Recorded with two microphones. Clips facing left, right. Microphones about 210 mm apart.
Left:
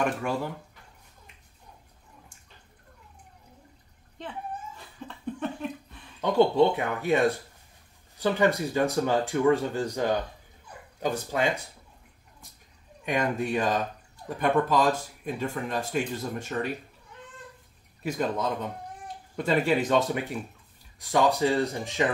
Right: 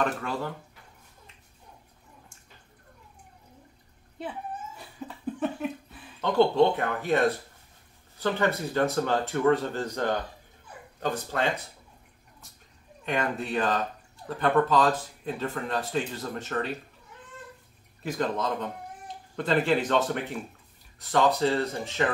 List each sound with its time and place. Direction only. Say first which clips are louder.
0.0 s speech: left 1 dB; 15° left (ahead or behind)
4.2 s speech: right 3 dB; 10° right (ahead or behind)
4.7 s dog: right 2 dB; 5° right (ahead or behind)
6.2 s speech: even; 10° left (ahead or behind)
8.2 s speech: left 3 dB; 15° left (ahead or behind)
13.0 s speech: left 2 dB; 10° left (ahead or behind)
18.0 s speech: left 1 dB; 10° left (ahead or behind)